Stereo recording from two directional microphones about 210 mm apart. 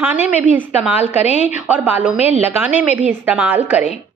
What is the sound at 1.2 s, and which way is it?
Speech, 35° left (ahead or behind).